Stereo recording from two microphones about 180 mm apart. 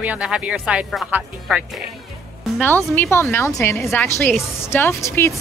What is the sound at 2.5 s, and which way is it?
A woman's voice, 10° left (ahead or behind).